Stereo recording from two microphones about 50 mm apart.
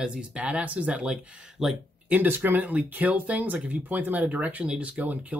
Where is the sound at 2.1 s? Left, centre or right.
Right.